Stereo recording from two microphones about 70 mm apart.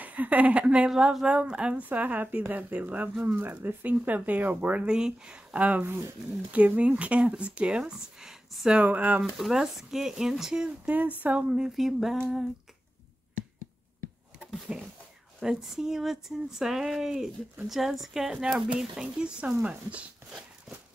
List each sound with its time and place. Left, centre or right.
0.0 s speech: right
4.8 s speech: centre
8.7 s speech: right
9.2 s speech: centre
10.9 s speech: right
11.4 s speech: centre
14.7 s speech: centre